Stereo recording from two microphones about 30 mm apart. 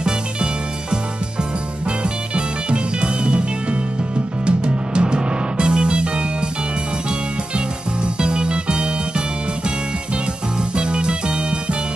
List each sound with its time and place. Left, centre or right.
0.0 s music: right
4.5 s music: right
8.2 s music: right
10.8 s music: right